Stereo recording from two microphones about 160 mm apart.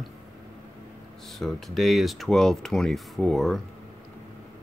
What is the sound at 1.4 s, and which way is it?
Speech, centre (ahead or behind).